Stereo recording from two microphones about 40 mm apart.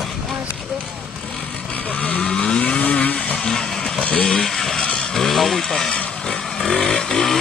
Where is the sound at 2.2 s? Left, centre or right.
Left.